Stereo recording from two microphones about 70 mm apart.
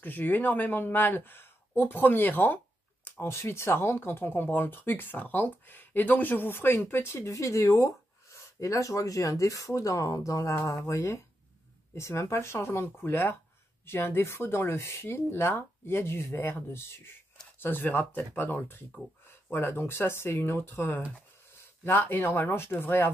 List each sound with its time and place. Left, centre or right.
0.0 s speech: left
3.3 s speech: left